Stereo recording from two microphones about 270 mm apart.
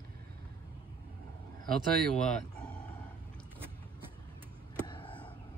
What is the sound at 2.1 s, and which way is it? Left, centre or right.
Speech, centre.